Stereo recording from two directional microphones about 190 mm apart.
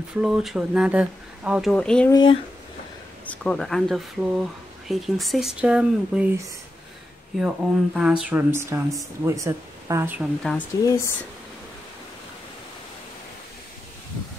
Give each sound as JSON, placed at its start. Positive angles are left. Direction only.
{"t": 0.1, "sound": "speech", "side_deg": -5}
{"t": 2.0, "sound": "speech", "side_deg": 20}
{"t": 3.3, "sound": "speech", "side_deg": 5}
{"t": 10.7, "sound": "speech", "side_deg": 20}